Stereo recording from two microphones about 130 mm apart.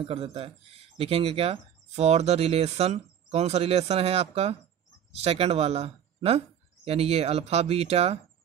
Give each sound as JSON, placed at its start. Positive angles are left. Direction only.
{"t": 0.0, "sound": "speech", "side_deg": -45}